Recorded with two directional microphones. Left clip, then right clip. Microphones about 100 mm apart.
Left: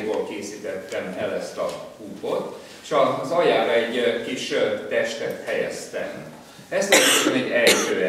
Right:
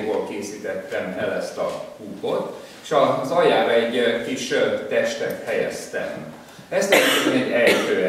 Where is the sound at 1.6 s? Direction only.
5° right (ahead or behind).